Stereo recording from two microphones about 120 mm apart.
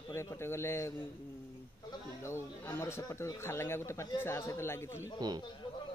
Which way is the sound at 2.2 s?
20° left (ahead or behind).